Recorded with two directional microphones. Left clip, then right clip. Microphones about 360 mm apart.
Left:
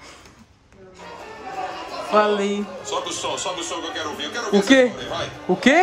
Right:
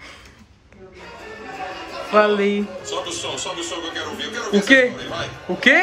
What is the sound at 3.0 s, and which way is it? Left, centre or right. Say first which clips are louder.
Speech: left 1 dB; left.